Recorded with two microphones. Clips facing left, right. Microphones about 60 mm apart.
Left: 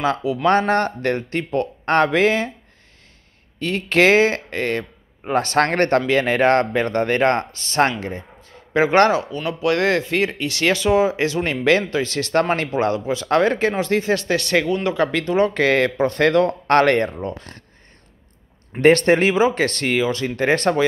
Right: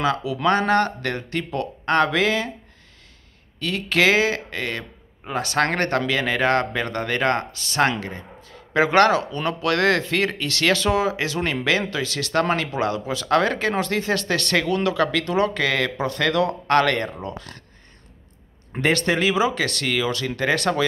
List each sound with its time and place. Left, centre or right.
0.0 s speech: left
3.5 s speech: left
18.8 s speech: left